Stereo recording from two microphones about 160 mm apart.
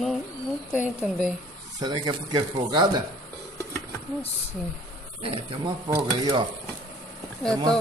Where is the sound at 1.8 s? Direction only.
25° right (ahead or behind).